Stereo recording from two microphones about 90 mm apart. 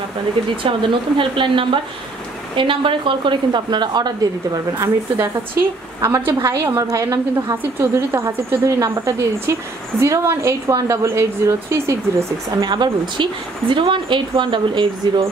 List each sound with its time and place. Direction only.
0.7 s a woman's voice: 70° right (ahead or behind); by 4.3 s 50° right (ahead or behind)
4.7 s speech: 30° right (ahead or behind)
5.9 s a woman's voice: 40° right (ahead or behind)
12.6 s a woman's voice: 55° right (ahead or behind)